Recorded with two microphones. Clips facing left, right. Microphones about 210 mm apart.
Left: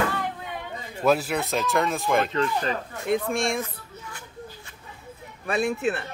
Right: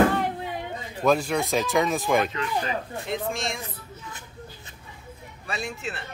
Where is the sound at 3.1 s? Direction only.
55° left (ahead or behind).